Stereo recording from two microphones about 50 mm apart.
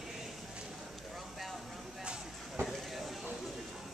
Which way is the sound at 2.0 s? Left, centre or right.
Right.